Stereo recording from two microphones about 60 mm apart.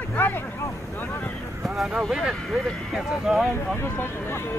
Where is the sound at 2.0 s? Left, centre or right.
Centre.